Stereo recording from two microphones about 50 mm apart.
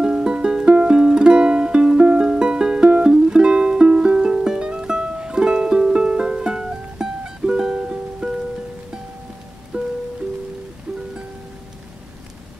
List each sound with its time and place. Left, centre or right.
0.0 s music: centre
9.7 s music: centre